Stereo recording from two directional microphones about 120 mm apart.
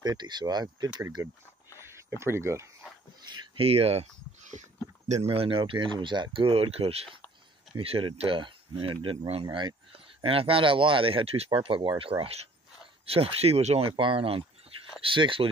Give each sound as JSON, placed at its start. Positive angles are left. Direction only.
{"t": 0.0, "sound": "speech", "side_deg": -35}
{"t": 3.5, "sound": "speech", "side_deg": -55}